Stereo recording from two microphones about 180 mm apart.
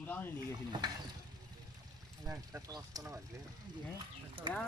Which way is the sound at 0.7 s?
25° right (ahead or behind).